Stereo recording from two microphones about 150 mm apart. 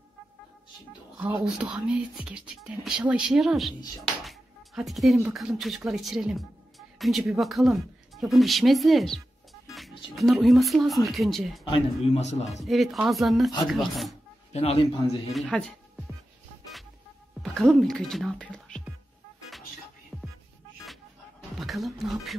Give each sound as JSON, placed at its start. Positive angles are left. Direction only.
{"t": 1.2, "sound": "speech", "side_deg": -10}
{"t": 4.2, "sound": "music", "side_deg": 0}
{"t": 5.3, "sound": "speech", "side_deg": 0}
{"t": 11.7, "sound": "a man's voice", "side_deg": 45}
{"t": 12.5, "sound": "speech", "side_deg": 0}
{"t": 14.5, "sound": "a man's voice", "side_deg": 45}
{"t": 15.3, "sound": "a sound", "side_deg": 5}
{"t": 17.4, "sound": "speech", "side_deg": 0}
{"t": 20.1, "sound": "music", "side_deg": 0}
{"t": 21.5, "sound": "speech", "side_deg": 0}